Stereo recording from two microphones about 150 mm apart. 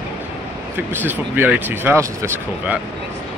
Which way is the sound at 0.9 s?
10° right (ahead or behind).